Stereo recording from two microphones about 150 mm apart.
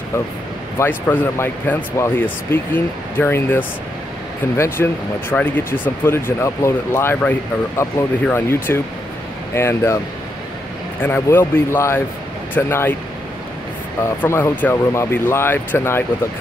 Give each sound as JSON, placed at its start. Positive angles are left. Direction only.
{"t": 0.7, "sound": "speech", "side_deg": 15}
{"t": 11.0, "sound": "speech", "side_deg": 15}
{"t": 14.0, "sound": "speech", "side_deg": 15}